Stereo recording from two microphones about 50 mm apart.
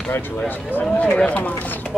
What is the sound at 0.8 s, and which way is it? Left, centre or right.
Speech, left.